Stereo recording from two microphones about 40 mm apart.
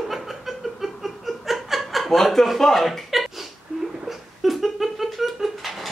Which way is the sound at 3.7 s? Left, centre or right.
Right.